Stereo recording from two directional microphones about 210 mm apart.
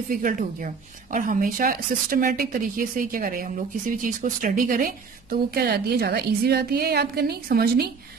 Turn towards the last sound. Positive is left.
turn(degrees=-45)  # may be behind; listen again after turning